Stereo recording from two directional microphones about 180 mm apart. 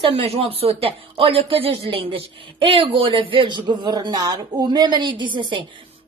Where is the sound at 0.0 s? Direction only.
30° right (ahead or behind).